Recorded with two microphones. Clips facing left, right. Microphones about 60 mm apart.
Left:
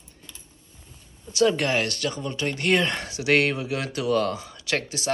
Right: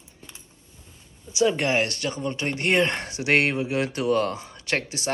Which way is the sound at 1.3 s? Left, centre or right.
Centre.